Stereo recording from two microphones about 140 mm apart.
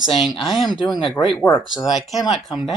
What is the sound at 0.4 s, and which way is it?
Speech, centre (ahead or behind).